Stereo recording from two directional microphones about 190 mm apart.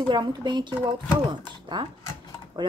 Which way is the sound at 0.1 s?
25° right (ahead or behind).